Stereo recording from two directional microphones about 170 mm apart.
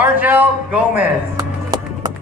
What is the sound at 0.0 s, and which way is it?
Speech, 10° right (ahead or behind).